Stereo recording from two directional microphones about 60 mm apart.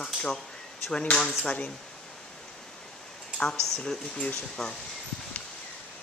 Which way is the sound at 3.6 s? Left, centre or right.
Centre.